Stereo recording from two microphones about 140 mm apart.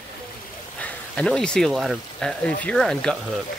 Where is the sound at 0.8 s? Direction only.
10° left (ahead or behind).